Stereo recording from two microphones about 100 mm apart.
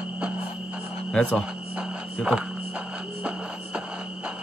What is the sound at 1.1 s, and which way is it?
Speech, 10° left (ahead or behind).